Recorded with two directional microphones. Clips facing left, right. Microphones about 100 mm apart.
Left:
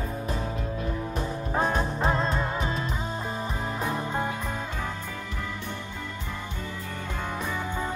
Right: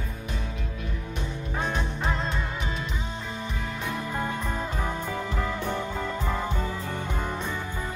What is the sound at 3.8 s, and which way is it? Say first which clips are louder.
Music: left 2 dB; 35° left (ahead or behind).